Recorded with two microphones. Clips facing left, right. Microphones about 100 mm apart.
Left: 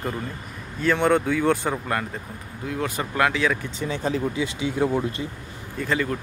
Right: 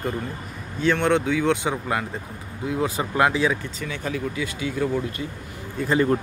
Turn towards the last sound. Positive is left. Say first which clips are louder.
# right 5 dB
turn(degrees=-30)  # may be behind; listen again after turning